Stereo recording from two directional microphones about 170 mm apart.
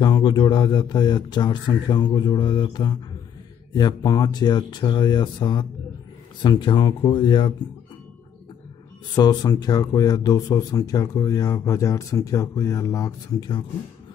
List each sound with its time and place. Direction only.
0.0 s speech: 25° left (ahead or behind)
9.1 s speech: 25° left (ahead or behind)